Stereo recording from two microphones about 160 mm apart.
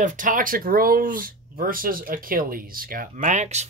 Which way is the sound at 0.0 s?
55° right (ahead or behind).